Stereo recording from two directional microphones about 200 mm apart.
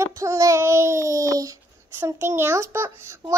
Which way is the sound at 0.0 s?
15° right (ahead or behind).